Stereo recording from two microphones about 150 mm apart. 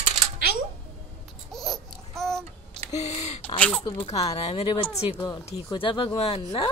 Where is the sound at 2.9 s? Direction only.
45° left (ahead or behind).